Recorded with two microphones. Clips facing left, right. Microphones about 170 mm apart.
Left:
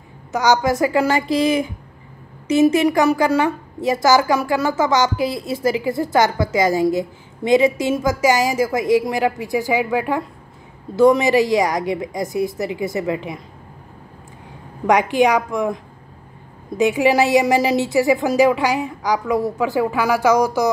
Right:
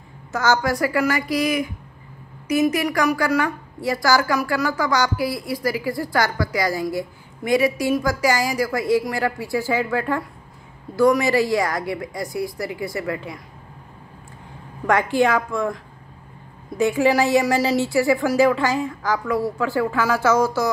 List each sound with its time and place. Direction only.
0.3 s a woman's voice: 15° left (ahead or behind)
14.9 s a woman's voice: 15° left (ahead or behind)